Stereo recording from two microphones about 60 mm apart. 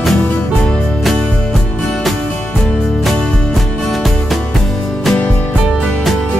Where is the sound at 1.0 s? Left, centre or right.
Centre.